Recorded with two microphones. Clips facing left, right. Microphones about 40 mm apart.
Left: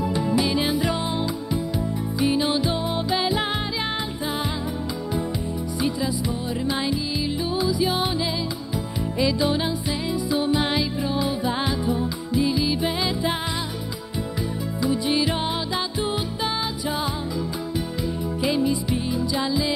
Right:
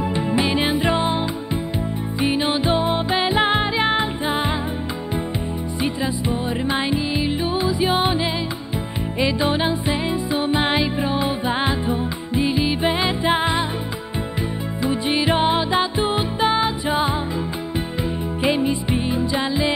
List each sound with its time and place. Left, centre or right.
0.0 s music: right
5.8 s music: right
14.8 s music: right